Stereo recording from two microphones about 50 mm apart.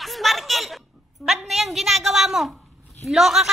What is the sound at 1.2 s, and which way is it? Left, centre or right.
A woman's voice, centre.